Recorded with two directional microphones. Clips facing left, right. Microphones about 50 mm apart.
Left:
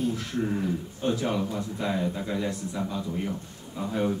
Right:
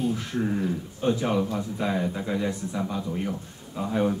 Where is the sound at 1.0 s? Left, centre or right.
Centre.